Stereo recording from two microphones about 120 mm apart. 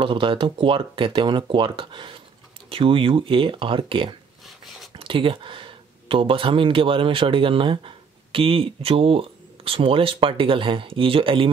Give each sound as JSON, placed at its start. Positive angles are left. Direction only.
{"t": 0.0, "sound": "speech", "side_deg": -45}